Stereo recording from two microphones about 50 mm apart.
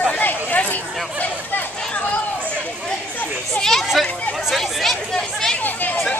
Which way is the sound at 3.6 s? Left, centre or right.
Centre.